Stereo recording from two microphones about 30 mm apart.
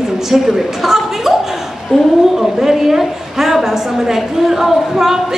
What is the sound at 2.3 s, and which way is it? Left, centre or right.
A woman's voice, centre.